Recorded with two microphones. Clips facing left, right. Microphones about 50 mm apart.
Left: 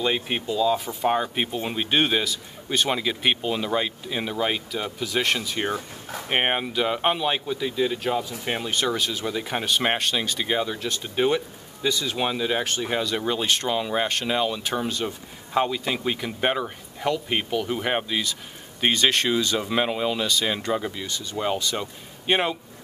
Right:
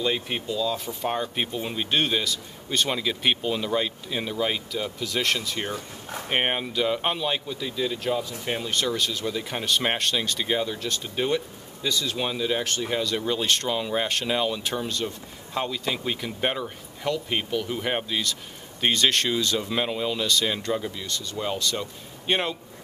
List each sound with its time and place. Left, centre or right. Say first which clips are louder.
0.0 s speech: left 2 dB; centre